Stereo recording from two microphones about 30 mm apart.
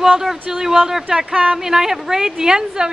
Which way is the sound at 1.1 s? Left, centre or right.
Right.